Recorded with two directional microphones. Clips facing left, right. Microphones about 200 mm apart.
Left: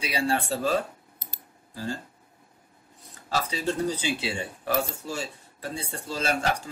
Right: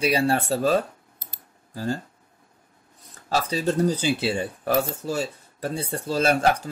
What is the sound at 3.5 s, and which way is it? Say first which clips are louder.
Speech: right 7 dB; 45° right (ahead or behind).